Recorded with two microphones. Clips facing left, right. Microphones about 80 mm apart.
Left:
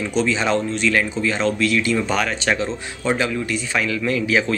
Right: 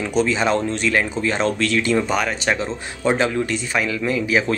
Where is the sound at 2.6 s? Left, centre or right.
Right.